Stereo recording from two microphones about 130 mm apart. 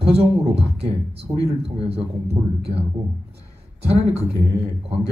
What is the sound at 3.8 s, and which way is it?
Speech, 50° right (ahead or behind).